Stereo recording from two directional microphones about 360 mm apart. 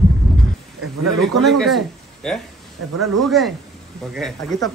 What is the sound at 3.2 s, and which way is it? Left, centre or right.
Speech, centre.